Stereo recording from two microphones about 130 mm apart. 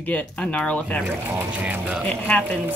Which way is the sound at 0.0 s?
10° left (ahead or behind).